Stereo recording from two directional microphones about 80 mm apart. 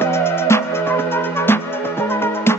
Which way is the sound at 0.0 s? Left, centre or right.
Left.